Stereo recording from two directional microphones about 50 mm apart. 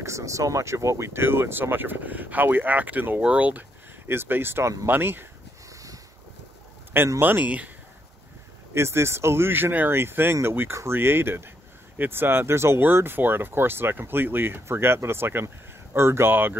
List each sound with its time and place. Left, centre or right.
0.0 s speech: right
4.1 s speech: right
7.2 s speech: right
7.4 s speech: right
8.7 s speech: right